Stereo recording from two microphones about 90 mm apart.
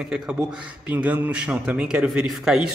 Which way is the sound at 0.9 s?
20° right (ahead or behind).